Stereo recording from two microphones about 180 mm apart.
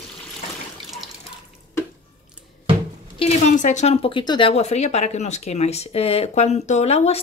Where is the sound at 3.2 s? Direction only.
40° left (ahead or behind).